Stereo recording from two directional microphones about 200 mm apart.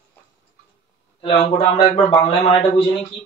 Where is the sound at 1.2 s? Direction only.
25° left (ahead or behind).